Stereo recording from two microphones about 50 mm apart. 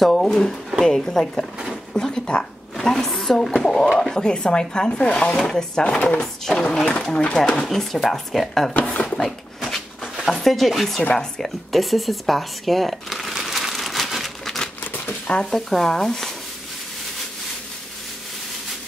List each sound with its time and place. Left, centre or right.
0.0 s a woman's voice: centre; by 5.4 s left
5.5 s speech: centre
5.9 s speech: left
6.4 s speech: centre
8.8 s speech: left
10.2 s speech: centre
11.1 s a sound: centre
14.8 s crumpling: left
15.5 s speech: centre